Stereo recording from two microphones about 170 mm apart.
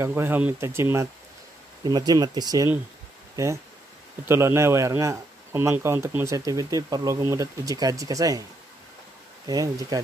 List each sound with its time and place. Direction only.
0.0 s speech: 15° right (ahead or behind)
9.5 s speech: 20° right (ahead or behind)